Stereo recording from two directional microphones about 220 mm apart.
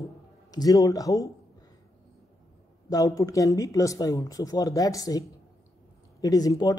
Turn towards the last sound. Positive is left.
turn(degrees=15)  # may be behind; listen again after turning